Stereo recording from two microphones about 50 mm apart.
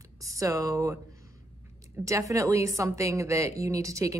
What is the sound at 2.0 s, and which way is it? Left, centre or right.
Speech, right.